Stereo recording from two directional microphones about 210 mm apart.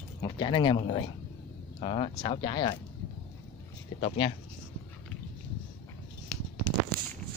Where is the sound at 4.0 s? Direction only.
25° left (ahead or behind).